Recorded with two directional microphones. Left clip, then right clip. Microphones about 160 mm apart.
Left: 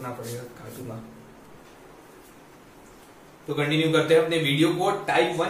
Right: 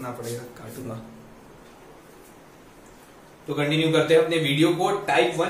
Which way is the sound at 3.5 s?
5° right (ahead or behind).